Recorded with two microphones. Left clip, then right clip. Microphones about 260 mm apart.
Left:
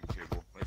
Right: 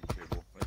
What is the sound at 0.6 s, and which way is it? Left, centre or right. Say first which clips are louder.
Clip-clop: right 6 dB; left.